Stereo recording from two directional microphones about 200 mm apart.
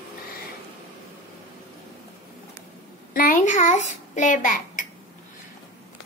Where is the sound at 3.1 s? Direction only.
45° left (ahead or behind).